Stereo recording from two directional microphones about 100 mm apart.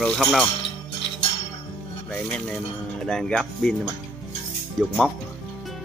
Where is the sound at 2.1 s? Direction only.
10° left (ahead or behind).